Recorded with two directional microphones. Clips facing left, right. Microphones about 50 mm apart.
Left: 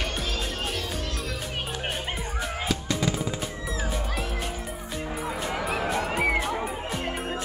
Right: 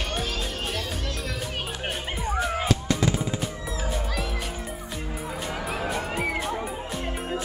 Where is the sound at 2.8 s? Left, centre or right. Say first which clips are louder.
Right 2 dB; centre.